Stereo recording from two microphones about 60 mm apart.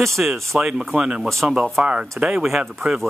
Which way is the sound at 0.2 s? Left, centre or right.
Centre.